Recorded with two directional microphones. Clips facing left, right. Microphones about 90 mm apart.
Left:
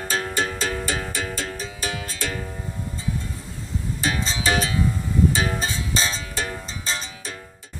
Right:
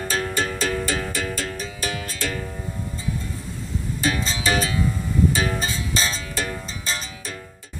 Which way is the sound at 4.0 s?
25° left (ahead or behind).